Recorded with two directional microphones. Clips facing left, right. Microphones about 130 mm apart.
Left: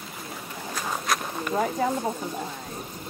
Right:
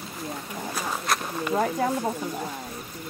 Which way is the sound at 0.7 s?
Centre (ahead or behind).